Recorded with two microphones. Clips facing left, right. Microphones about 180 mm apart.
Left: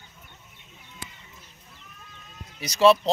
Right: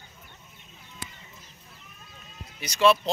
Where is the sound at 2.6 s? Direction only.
35° left (ahead or behind).